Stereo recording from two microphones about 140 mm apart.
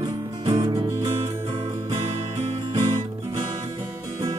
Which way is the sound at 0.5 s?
35° right (ahead or behind).